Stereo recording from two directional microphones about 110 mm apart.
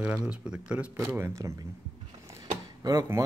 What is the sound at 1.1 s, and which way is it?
Speech, 25° right (ahead or behind).